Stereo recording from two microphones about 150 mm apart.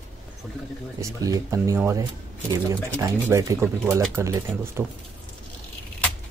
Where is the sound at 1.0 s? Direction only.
20° right (ahead or behind).